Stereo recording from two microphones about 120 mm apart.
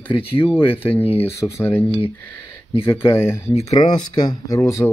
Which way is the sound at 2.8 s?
20° left (ahead or behind).